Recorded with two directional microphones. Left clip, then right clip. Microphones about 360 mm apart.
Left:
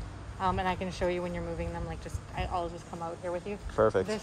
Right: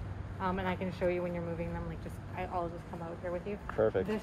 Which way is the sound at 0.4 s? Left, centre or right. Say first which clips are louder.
Left 5 dB; left.